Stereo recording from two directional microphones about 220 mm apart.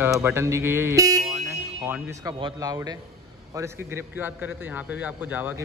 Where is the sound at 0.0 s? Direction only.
10° right (ahead or behind).